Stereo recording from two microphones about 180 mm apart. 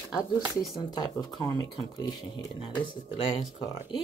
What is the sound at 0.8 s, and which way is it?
Speech, 20° left (ahead or behind).